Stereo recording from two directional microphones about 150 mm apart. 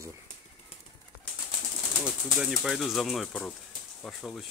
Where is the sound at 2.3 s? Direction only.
5° right (ahead or behind).